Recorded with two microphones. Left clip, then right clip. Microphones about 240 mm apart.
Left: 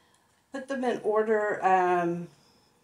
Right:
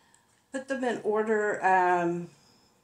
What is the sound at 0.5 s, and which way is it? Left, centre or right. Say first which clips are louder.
Speech: even; centre.